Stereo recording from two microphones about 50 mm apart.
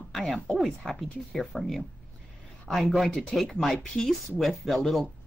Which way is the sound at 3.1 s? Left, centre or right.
Centre.